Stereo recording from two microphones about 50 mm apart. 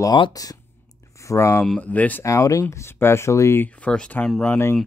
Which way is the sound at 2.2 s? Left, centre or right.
Left.